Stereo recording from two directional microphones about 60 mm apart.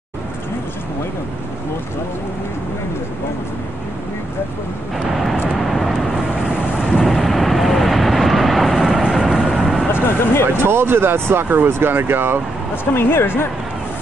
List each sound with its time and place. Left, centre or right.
4.9 s vehicle: centre
6.9 s vehicle: centre
7.2 s vehicle: centre
9.9 s a sound: left
10.6 s speech: right
12.9 s a woman's voice: left